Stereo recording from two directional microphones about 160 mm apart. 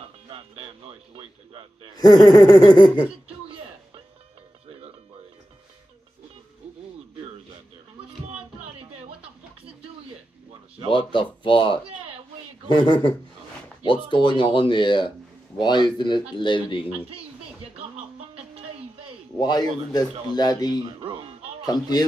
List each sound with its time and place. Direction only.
0.3 s music: 35° right (ahead or behind)
2.0 s speech: 25° left (ahead or behind)
6.6 s a sound: 5° right (ahead or behind)
8.3 s music: 35° right (ahead or behind)
10.9 s speech: 30° left (ahead or behind)
14.1 s speech: 30° left (ahead or behind)
19.3 s speech: 25° left (ahead or behind)
20.8 s music: 30° right (ahead or behind)
21.6 s speech: 25° left (ahead or behind)